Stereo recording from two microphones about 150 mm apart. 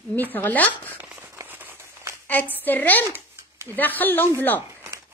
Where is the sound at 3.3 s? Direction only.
15° right (ahead or behind).